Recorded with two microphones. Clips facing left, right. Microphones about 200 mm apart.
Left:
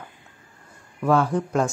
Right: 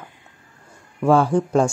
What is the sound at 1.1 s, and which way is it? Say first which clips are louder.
Speech: right 4 dB; 30° right (ahead or behind).